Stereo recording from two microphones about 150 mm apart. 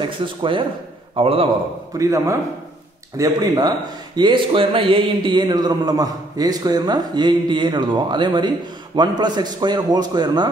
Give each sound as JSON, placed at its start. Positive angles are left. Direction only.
{"t": 0.2, "sound": "a man's voice", "side_deg": -35}
{"t": 2.0, "sound": "speech", "side_deg": -20}